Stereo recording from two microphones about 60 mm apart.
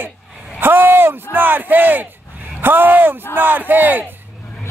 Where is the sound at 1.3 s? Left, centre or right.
Right.